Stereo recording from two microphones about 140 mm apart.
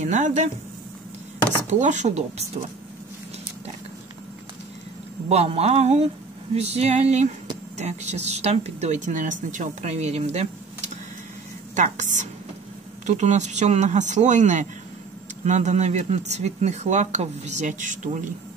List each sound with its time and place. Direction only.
0.0 s speech: 60° right (ahead or behind)
1.7 s speech: 60° right (ahead or behind)
5.3 s speech: 45° right (ahead or behind)
11.7 s speech: 60° right (ahead or behind)